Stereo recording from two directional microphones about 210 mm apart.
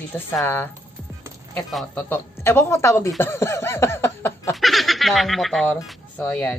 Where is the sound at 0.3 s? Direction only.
10° left (ahead or behind).